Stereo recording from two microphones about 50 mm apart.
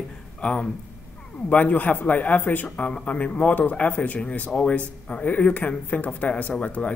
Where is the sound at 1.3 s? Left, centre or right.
Left.